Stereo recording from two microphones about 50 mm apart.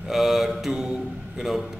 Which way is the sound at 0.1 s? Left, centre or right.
Centre.